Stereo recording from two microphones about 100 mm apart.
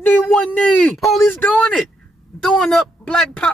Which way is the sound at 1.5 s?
10° left (ahead or behind).